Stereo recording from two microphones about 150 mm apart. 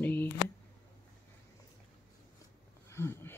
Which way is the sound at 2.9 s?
15° left (ahead or behind).